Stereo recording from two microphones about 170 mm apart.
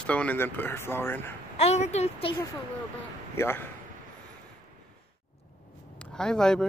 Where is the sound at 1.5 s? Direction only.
40° left (ahead or behind).